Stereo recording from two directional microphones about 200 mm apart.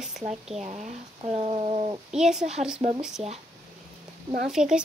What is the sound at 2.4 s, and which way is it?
Speech, 35° right (ahead or behind).